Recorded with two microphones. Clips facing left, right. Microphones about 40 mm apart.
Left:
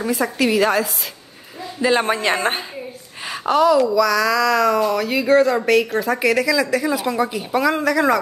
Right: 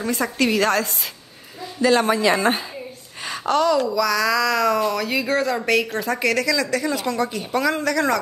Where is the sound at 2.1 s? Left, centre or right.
Left.